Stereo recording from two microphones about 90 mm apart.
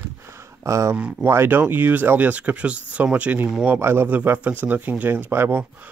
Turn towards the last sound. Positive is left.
turn(degrees=-25)  # may be behind; listen again after turning